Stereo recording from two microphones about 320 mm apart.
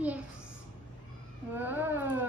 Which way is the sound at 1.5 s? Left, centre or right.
Centre.